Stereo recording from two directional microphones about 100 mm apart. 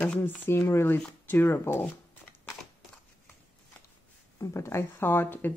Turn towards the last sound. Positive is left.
turn(degrees=20)  # may be behind; listen again after turning